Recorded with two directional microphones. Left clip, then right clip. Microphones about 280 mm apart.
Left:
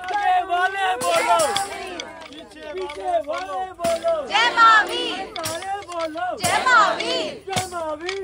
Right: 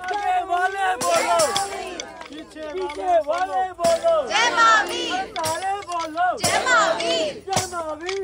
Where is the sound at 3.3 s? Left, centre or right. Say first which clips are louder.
Right 4 dB; right.